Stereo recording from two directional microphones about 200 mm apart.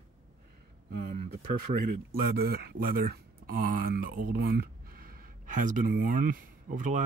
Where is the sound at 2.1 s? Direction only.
50° right (ahead or behind).